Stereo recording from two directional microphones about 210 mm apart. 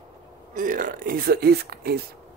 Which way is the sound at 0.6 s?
40° right (ahead or behind).